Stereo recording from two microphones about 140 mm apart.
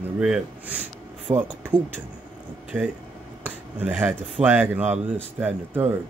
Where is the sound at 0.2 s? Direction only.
5° right (ahead or behind).